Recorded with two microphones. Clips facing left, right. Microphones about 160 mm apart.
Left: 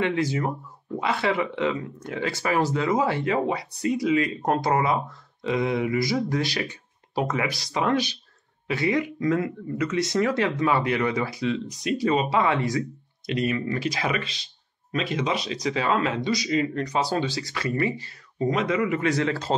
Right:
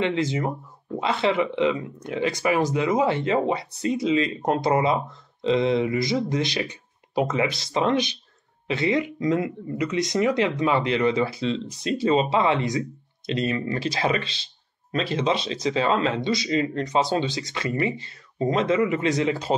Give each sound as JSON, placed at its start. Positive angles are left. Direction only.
{"t": 0.0, "sound": "speech", "side_deg": -20}